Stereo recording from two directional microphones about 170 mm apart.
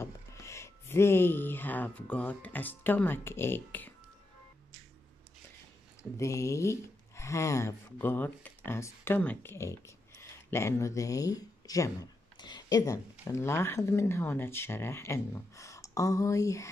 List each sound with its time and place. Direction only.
0.0 s speech: 15° left (ahead or behind)
6.1 s speech: 15° left (ahead or behind)